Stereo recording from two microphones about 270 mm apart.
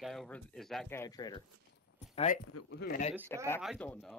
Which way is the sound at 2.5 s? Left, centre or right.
Left.